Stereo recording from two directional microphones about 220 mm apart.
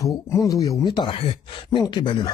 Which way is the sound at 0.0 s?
15° left (ahead or behind).